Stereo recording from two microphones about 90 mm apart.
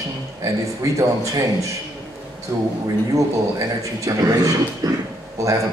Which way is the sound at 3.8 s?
40° right (ahead or behind).